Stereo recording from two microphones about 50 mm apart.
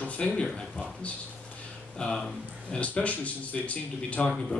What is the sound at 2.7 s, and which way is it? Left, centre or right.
Speech, left.